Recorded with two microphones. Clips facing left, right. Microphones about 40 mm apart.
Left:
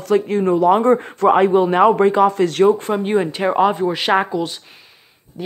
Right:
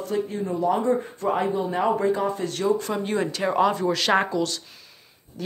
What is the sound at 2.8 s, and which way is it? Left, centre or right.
Speech, left.